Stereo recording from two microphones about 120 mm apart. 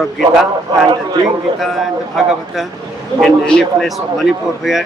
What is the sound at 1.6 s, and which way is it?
A man's voice, centre (ahead or behind).